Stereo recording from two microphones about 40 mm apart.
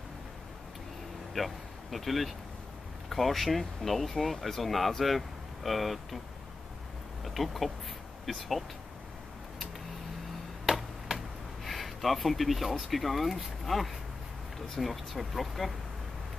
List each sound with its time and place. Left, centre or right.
1.3 s speech: centre
7.2 s speech: centre
10.6 s a sound: centre
11.6 s speech: centre